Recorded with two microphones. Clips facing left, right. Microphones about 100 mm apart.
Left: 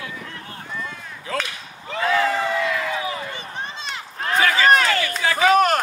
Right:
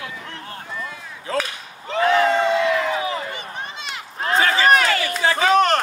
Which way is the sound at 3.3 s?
30° left (ahead or behind).